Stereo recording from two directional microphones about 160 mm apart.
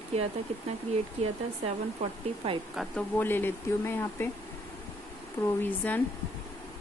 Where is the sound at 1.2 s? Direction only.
40° right (ahead or behind).